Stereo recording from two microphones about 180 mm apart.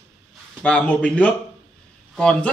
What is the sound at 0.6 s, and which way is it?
A man's voice, 5° left (ahead or behind).